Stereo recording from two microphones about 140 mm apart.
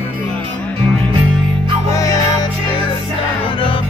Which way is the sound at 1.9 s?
25° left (ahead or behind).